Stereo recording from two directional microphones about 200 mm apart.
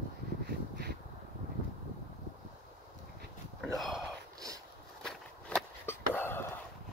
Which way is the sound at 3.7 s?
Centre (ahead or behind).